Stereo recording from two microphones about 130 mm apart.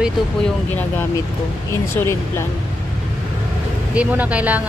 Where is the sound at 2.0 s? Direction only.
20° left (ahead or behind).